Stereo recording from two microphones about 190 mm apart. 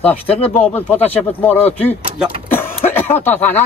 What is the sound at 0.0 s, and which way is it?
Speech, 10° left (ahead or behind).